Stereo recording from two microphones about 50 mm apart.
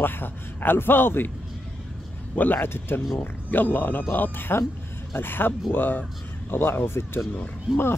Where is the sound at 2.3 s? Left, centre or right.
Left.